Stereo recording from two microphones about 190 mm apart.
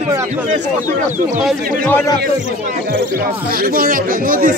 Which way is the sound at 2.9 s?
50° right (ahead or behind).